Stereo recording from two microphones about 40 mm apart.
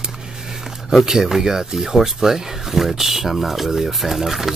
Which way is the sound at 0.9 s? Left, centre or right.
Centre.